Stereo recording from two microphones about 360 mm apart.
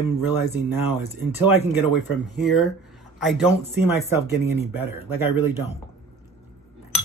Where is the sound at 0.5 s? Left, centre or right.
Centre.